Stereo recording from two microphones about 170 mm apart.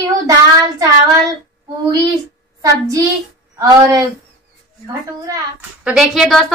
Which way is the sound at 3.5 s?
20° right (ahead or behind).